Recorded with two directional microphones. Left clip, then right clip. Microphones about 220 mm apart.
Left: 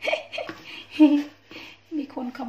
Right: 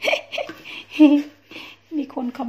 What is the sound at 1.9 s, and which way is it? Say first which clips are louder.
Speech: right 4 dB; 30° right (ahead or behind).